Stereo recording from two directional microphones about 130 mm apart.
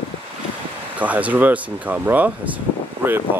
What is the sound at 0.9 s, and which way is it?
Speech, 10° right (ahead or behind).